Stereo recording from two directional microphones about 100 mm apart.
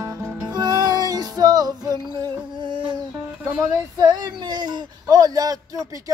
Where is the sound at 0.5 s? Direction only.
45° right (ahead or behind).